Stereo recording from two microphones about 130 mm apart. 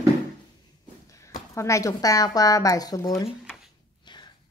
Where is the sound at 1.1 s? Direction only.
25° left (ahead or behind).